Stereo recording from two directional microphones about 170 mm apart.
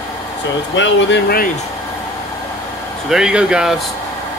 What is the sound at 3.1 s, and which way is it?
Speech, 5° right (ahead or behind).